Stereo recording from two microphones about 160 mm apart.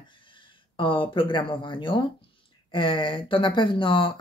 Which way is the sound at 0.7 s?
30° left (ahead or behind).